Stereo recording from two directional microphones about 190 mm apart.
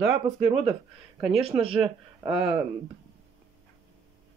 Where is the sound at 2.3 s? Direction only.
5° right (ahead or behind).